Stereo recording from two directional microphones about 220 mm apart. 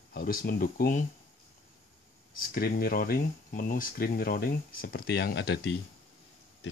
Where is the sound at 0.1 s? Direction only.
40° left (ahead or behind).